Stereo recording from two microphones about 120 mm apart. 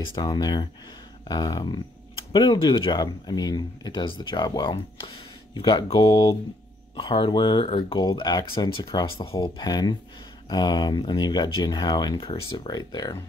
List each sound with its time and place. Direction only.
0.1 s speech: 35° left (ahead or behind)
8.7 s speech: 50° left (ahead or behind); by 13.2 s 30° left (ahead or behind)